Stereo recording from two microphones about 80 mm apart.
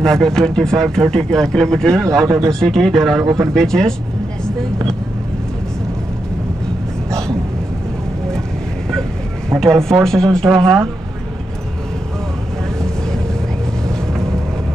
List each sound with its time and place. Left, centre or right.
0.0 s speech: centre
2.2 s speech: right
2.6 s speech: centre
9.6 s speech: centre